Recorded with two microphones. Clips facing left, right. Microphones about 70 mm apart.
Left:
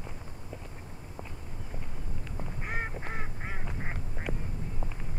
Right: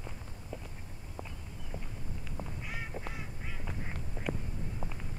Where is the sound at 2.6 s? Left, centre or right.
Left.